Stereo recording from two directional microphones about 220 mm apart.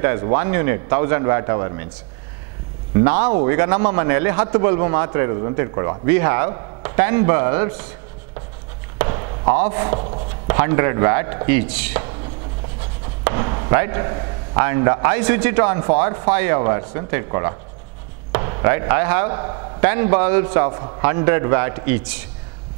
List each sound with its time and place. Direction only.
0.0 s speech: 15° right (ahead or behind)
3.0 s speech: 10° right (ahead or behind)
8.9 s a sound: 20° right (ahead or behind)
9.6 s speech: 15° right (ahead or behind)
13.2 s speech: 20° right (ahead or behind)